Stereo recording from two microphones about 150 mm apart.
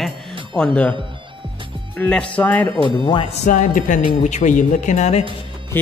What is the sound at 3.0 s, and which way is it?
Speech, 30° left (ahead or behind).